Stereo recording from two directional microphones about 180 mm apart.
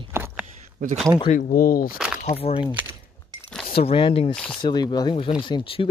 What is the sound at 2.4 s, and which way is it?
Speech, 30° left (ahead or behind).